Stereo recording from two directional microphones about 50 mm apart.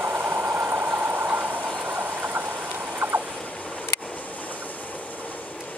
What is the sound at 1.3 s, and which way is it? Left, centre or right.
Train, right.